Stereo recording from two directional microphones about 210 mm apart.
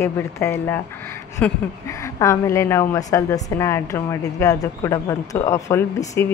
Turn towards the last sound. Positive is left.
turn(degrees=15)  # may be behind; listen again after turning